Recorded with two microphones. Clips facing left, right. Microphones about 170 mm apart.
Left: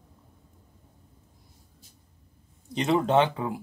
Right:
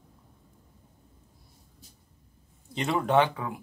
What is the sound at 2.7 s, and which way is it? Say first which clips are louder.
Speech: left 2 dB; 20° left (ahead or behind).